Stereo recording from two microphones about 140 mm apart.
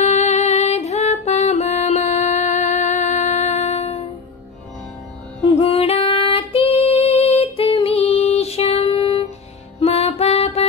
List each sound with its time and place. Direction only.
0.0 s music: 50° left (ahead or behind)
5.6 s female singing: 45° left (ahead or behind)
9.8 s music: 45° left (ahead or behind)